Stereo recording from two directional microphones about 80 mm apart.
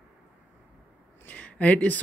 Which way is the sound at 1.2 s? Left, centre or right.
Centre.